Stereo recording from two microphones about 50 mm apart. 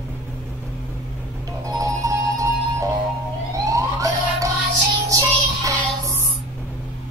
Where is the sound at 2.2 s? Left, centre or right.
Right.